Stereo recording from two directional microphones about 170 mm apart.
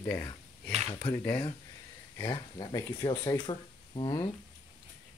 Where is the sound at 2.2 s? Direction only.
25° left (ahead or behind).